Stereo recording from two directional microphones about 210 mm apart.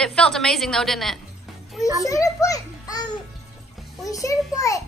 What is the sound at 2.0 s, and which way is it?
A child's voice, 15° left (ahead or behind).